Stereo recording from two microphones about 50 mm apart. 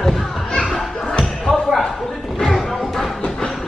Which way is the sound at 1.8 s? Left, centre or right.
Centre.